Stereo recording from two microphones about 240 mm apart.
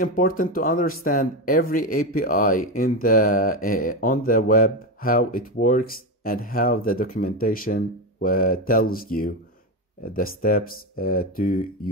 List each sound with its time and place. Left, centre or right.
0.0 s speech: left